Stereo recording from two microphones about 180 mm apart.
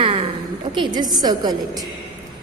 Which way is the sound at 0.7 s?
25° right (ahead or behind).